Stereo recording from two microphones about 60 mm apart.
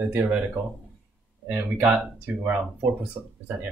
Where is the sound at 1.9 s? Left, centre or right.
Right.